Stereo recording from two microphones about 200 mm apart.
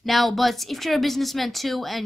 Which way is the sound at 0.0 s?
Centre (ahead or behind).